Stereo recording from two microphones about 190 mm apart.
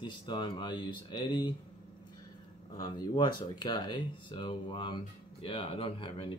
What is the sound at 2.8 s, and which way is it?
Speech, 25° left (ahead or behind).